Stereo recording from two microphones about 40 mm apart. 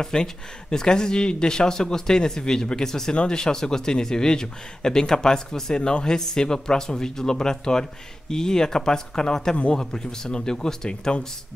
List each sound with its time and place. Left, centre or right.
0.0 s speech: centre